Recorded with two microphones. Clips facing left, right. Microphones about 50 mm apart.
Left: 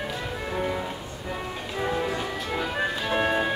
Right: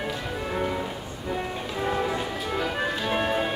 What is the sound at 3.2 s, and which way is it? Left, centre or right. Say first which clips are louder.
Music: left 3 dB; centre.